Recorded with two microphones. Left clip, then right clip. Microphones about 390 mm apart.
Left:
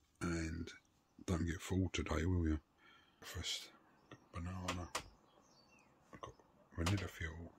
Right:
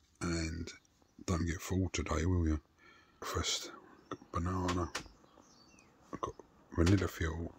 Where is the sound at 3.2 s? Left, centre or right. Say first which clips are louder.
Right 8 dB; centre.